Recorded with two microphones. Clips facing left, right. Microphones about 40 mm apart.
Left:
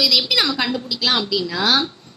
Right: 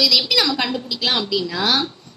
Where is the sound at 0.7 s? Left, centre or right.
Centre.